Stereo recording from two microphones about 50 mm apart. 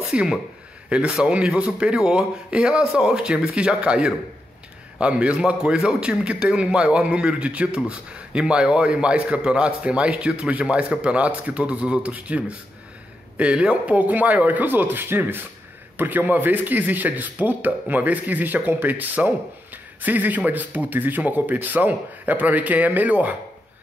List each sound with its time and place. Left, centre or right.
0.1 s a man's voice: centre; by 23.3 s right